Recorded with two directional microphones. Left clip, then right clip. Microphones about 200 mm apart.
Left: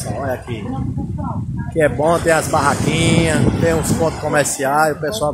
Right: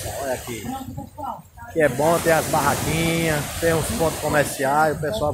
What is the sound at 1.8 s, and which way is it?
Speech, 15° left (ahead or behind).